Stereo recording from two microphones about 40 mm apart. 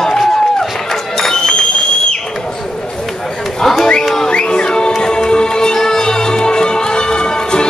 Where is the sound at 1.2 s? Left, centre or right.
Centre.